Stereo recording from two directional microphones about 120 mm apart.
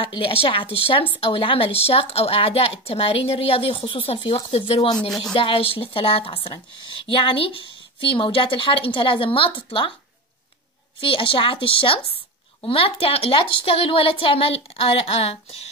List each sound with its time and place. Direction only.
0.0 s a woman's voice: 45° left (ahead or behind)
11.0 s a woman's voice: 45° left (ahead or behind)